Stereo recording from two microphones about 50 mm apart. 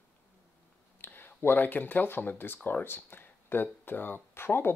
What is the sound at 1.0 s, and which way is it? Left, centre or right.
Speech, left.